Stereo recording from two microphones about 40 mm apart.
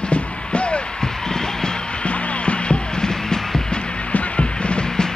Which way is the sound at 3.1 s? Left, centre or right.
Centre.